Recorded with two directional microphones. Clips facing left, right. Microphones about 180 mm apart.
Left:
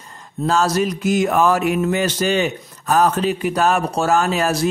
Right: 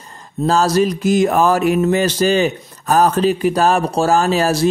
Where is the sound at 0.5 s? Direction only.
35° right (ahead or behind).